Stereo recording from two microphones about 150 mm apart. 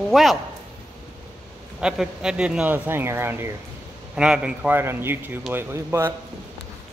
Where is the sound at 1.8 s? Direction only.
5° right (ahead or behind).